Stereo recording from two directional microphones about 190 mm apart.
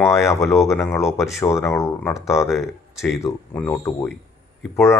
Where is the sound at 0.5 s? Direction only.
15° left (ahead or behind).